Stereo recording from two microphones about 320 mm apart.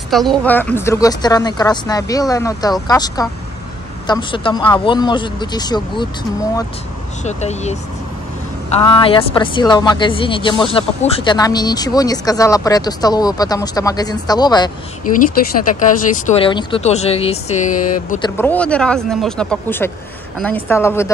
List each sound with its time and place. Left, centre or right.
0.1 s speech: centre
7.2 s speech: left
8.8 s speech: centre
16.1 s speech: centre
18.3 s speech: centre